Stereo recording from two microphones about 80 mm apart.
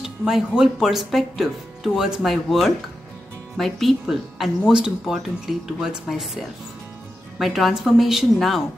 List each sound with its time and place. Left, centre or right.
0.0 s speech: centre